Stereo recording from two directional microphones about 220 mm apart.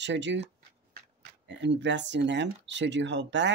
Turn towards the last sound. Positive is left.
turn(degrees=-55)  # may be behind; listen again after turning